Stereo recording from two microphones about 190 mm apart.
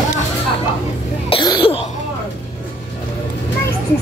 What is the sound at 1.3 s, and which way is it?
Cough, 25° left (ahead or behind).